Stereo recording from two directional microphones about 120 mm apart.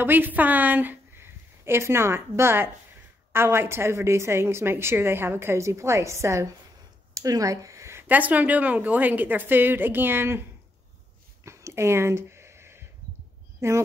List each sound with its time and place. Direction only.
0.0 s a woman's voice: 15° right (ahead or behind)
11.4 s a sound: 25° right (ahead or behind)
13.6 s speech: 25° right (ahead or behind)